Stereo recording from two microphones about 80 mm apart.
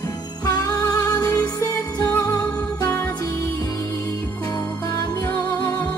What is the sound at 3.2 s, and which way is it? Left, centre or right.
Music, left.